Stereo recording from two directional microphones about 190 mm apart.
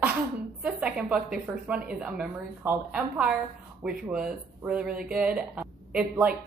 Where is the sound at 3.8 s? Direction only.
5° right (ahead or behind).